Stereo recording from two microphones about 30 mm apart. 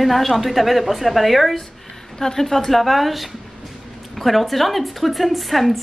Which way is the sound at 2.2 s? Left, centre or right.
Centre.